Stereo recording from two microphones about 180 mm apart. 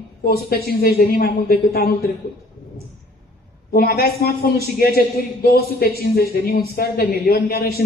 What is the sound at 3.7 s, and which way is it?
A man's voice, 55° left (ahead or behind).